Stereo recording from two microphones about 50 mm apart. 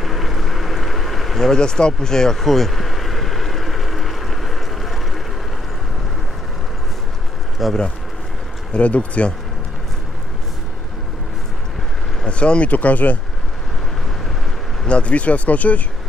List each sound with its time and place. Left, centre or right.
0.0 s a sound: centre
7.6 s speech: centre
8.7 s speech: left
12.3 s speech: left
14.9 s speech: left